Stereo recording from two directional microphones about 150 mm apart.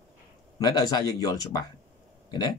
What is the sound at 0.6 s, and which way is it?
Speech, 25° left (ahead or behind).